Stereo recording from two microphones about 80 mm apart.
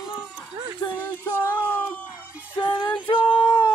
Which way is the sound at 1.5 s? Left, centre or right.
Left.